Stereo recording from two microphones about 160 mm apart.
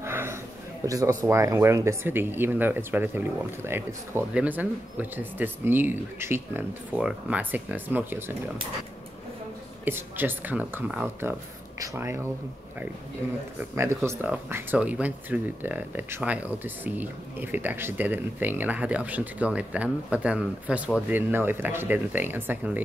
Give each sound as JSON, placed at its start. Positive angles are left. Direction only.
{"t": 0.0, "sound": "a sound", "side_deg": -15}
{"t": 0.8, "sound": "speech", "side_deg": -20}
{"t": 9.8, "sound": "speech", "side_deg": -15}
{"t": 13.6, "sound": "speech", "side_deg": -15}